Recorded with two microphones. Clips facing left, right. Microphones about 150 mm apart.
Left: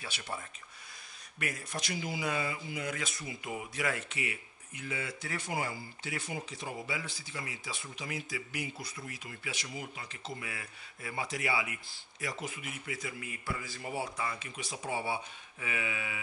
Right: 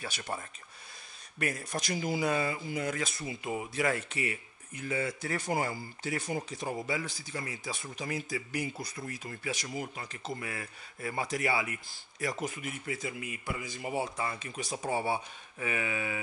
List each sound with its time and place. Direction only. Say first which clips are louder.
0.0 s speech: right 3 dB; 45° right (ahead or behind)
1.4 s speech: right 4 dB; 40° right (ahead or behind)
12.9 s a man's voice: right 1 dB; 25° right (ahead or behind)
14.2 s speech: right 2 dB; 40° right (ahead or behind)